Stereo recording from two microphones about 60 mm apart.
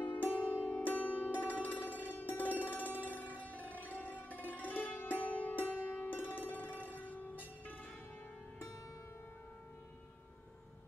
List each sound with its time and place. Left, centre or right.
0.0 s music: left